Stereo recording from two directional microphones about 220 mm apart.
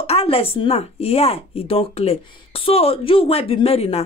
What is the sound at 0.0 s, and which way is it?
Speech, 25° left (ahead or behind).